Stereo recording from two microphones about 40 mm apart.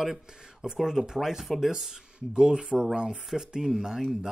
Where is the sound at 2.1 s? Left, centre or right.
Right.